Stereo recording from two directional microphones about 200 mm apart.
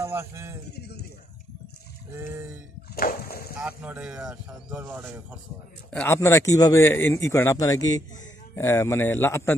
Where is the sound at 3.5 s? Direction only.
5° right (ahead or behind).